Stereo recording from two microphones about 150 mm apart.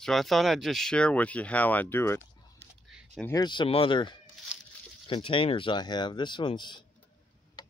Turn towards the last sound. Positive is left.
turn(degrees=30)  # may be behind; listen again after turning